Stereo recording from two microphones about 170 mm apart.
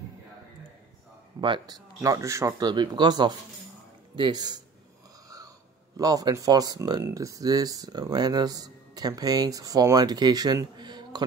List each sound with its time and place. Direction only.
1.4 s speech: 30° right (ahead or behind)
2.0 s speech: 20° right (ahead or behind)
5.9 s speech: 20° right (ahead or behind)